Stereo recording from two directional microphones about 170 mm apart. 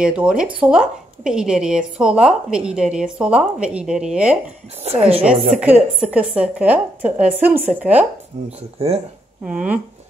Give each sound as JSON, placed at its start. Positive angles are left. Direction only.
{"t": 0.0, "sound": "a woman's voice", "side_deg": -5}
{"t": 4.8, "sound": "a woman's voice", "side_deg": -35}
{"t": 5.6, "sound": "a woman's voice", "side_deg": -10}
{"t": 8.7, "sound": "a woman's voice", "side_deg": -35}
{"t": 9.5, "sound": "a woman's voice", "side_deg": -5}